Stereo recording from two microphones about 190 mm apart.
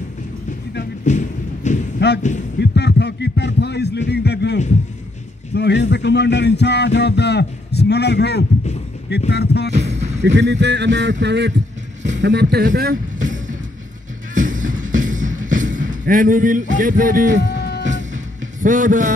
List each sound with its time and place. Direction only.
1.0 s a sound: 40° left (ahead or behind)
2.0 s a sound: 65° left (ahead or behind)
5.5 s speech: 65° left (ahead or behind)
9.7 s music: 35° right (ahead or behind)
10.2 s a man's voice: 65° right (ahead or behind); by 13.6 s 45° right (ahead or behind)
14.3 s music: 45° right (ahead or behind)
17.6 s music: 55° left (ahead or behind)
17.8 s music: 40° right (ahead or behind)